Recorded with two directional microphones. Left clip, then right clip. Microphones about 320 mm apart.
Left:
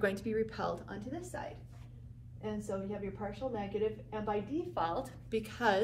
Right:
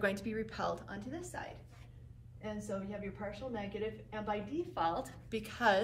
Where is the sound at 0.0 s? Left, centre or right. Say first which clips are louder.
Left 3 dB; centre.